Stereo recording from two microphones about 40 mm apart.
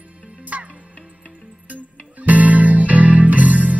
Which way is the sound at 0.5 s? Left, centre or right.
Right.